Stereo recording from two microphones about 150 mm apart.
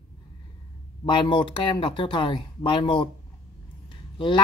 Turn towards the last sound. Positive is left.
turn(degrees=30)  # may be behind; listen again after turning